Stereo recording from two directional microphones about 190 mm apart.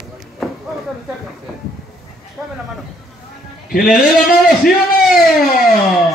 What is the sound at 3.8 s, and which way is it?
Speech, 5° right (ahead or behind).